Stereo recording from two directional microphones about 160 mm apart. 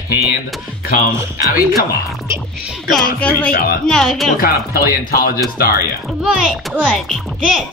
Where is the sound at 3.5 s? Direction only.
75° left (ahead or behind).